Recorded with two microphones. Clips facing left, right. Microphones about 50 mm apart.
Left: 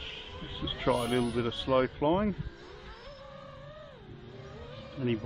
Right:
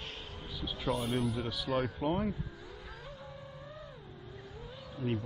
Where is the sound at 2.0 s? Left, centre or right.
Left.